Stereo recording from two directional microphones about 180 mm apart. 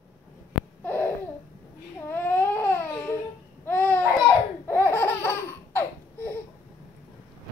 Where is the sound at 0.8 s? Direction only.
10° left (ahead or behind).